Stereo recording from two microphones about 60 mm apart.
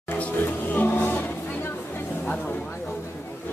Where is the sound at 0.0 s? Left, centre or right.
Left.